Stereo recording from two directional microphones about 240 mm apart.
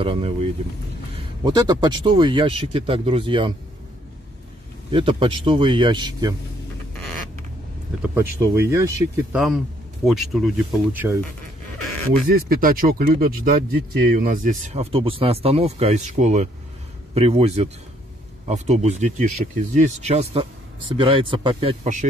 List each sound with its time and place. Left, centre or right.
0.0 s speech: right
4.9 s speech: right
8.0 s speech: centre
10.0 s speech: centre
12.3 s speech: right